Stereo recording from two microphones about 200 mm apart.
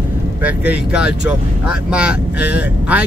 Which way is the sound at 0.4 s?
10° right (ahead or behind).